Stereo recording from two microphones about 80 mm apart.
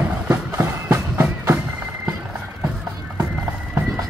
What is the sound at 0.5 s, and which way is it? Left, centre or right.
Music, right.